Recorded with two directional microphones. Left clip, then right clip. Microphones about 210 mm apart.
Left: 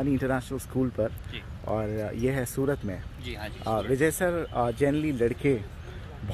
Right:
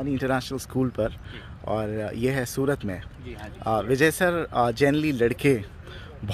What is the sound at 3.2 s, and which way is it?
Speech, centre (ahead or behind).